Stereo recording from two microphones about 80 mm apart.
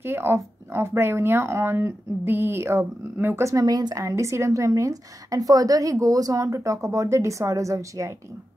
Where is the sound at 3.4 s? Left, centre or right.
Right.